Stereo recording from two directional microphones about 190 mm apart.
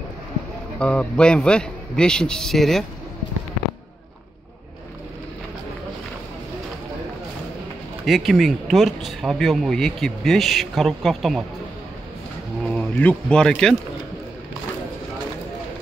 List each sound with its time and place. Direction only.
0.7 s speech: 5° left (ahead or behind)
8.0 s speech: centre (ahead or behind)
12.6 s speech: 5° left (ahead or behind)